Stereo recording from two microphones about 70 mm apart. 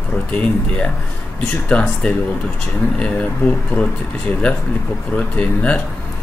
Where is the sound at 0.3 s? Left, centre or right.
Centre.